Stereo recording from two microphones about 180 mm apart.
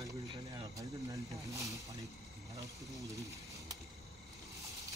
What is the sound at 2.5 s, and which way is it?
Speech, 20° right (ahead or behind).